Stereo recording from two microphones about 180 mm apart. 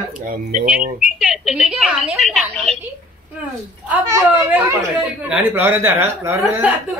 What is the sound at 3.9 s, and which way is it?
Speech, 15° right (ahead or behind).